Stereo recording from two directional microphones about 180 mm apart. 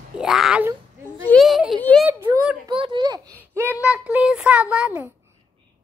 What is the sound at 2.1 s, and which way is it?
Speech, 10° right (ahead or behind).